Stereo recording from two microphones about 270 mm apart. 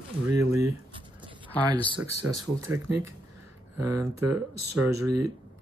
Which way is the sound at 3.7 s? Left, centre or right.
Right.